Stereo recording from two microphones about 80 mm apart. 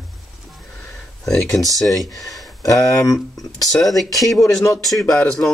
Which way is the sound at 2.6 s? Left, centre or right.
Left.